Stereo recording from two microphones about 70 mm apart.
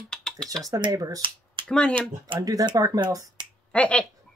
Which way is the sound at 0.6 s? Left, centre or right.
Right.